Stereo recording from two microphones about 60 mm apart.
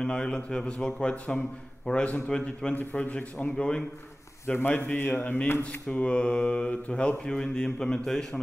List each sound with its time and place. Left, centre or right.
0.0 s a man's voice: centre
2.7 s a man's voice: left
3.5 s a man's voice: centre
4.6 s a man's voice: left
5.9 s a man's voice: centre